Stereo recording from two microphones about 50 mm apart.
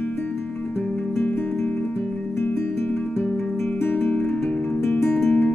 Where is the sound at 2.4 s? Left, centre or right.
Left.